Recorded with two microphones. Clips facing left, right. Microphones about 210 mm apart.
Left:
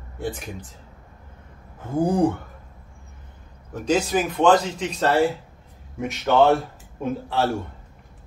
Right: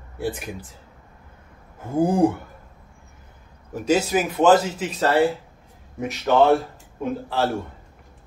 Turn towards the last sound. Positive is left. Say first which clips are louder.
# even
turn(degrees=0)  # may be behind; listen again after turning